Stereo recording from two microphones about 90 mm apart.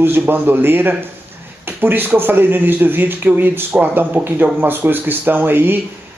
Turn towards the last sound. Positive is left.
turn(degrees=-20)  # may be behind; listen again after turning